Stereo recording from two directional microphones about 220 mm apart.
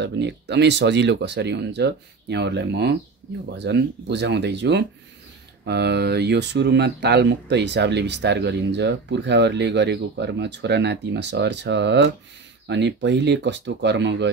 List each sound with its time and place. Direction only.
0.0 s speech: 50° right (ahead or behind)